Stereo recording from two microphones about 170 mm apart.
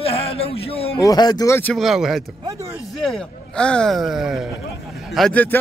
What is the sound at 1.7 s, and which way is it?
Speech, centre (ahead or behind).